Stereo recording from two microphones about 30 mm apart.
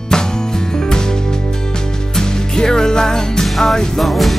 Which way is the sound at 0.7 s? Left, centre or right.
Left.